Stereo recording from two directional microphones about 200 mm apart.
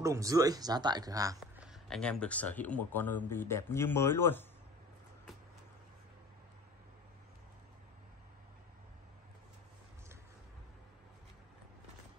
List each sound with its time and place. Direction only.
0.0 s speech: 15° right (ahead or behind)
1.4 s speech: centre (ahead or behind)